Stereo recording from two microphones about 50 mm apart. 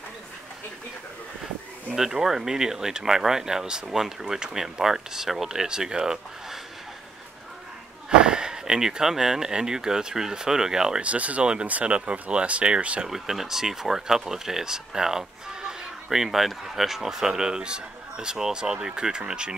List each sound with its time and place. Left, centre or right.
1.9 s speech: centre
8.2 s speech: centre
11.0 s speech: right
13.0 s speech: centre